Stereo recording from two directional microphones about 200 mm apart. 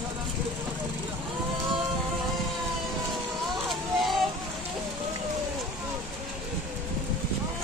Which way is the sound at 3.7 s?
Centre (ahead or behind).